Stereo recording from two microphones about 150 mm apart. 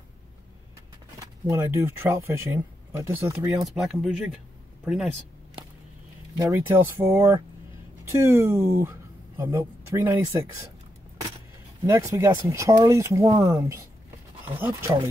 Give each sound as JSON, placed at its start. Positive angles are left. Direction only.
{"t": 1.5, "sound": "speech", "side_deg": -15}
{"t": 3.6, "sound": "speech", "side_deg": -5}
{"t": 6.3, "sound": "speech", "side_deg": -20}
{"t": 11.8, "sound": "speech", "side_deg": -20}